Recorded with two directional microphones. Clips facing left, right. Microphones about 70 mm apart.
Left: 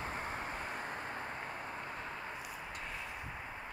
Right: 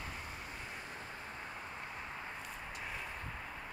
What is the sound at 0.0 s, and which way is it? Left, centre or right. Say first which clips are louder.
Vehicle: left 6 dB; left.